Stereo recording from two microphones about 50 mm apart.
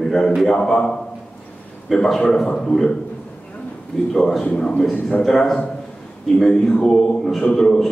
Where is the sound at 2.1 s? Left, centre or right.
Centre.